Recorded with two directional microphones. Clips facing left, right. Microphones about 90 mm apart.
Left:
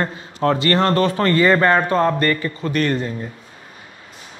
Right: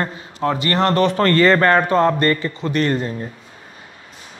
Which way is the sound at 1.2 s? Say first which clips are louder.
Right 1 dB; 15° left (ahead or behind).